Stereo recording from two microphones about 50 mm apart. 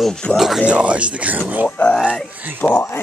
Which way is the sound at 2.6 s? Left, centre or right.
Left.